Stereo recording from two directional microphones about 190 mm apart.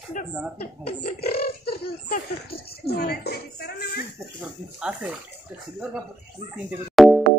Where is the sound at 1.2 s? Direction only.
55° left (ahead or behind).